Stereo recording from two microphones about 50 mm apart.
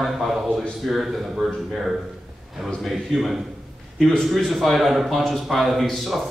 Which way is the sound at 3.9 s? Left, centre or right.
Centre.